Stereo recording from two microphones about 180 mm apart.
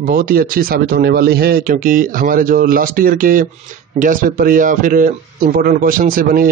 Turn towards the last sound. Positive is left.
turn(degrees=-50)  # may be behind; listen again after turning